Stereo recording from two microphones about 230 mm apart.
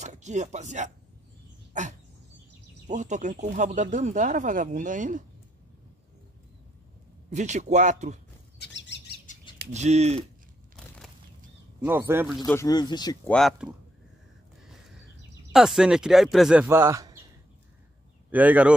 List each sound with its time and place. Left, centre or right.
0.0 s speech: right
1.7 s dog: right
2.9 s speech: right
7.2 s speech: right
8.5 s bird: left
9.7 s speech: right
11.8 s speech: centre
12.5 s speech: centre
13.3 s speech: centre
15.5 s speech: centre
18.3 s speech: centre